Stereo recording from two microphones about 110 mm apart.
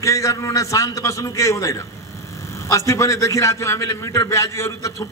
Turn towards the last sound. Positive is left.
turn(degrees=25)  # may be behind; listen again after turning